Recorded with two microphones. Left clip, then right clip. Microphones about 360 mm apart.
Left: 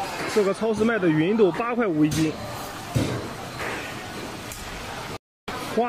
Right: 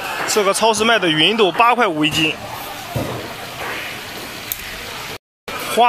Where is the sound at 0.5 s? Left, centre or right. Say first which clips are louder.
Right 9 dB; right.